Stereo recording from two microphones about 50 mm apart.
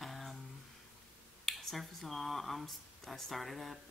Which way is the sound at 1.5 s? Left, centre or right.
Centre.